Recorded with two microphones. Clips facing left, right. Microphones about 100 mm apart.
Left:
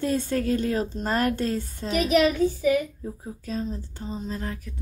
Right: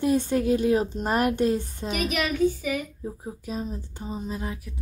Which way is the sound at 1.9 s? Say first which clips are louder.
Left 7 dB; 30° left (ahead or behind).